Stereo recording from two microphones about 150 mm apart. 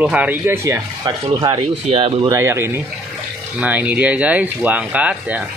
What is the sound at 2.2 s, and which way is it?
Speech, 20° right (ahead or behind).